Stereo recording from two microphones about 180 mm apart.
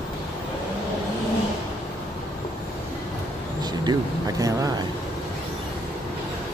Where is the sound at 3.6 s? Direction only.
20° right (ahead or behind).